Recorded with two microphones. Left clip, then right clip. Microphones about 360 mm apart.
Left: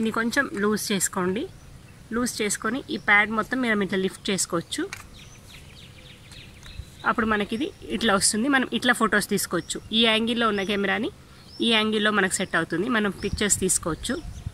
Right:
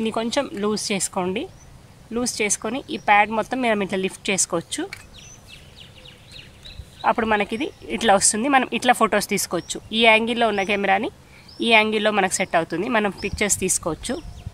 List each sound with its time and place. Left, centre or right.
0.0 s speech: centre
7.0 s speech: centre